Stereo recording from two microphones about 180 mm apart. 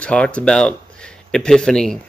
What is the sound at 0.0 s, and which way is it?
Speech, 5° left (ahead or behind).